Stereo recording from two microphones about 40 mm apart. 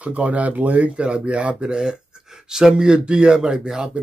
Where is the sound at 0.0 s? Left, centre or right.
Right; by 4.0 s centre.